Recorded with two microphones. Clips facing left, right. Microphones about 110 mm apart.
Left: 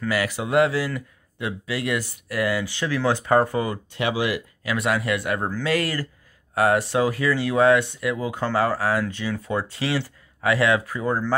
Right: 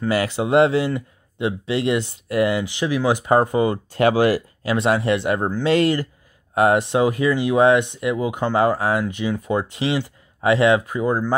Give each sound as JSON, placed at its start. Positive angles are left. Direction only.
{"t": 0.0, "sound": "speech", "side_deg": -25}
{"t": 3.9, "sound": "speech", "side_deg": -45}
{"t": 4.6, "sound": "speech", "side_deg": -30}